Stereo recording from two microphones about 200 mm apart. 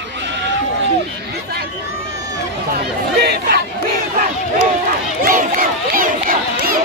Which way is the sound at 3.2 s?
50° right (ahead or behind).